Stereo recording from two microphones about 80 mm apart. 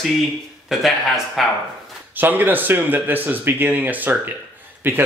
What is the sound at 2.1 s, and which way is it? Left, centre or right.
Speech, right.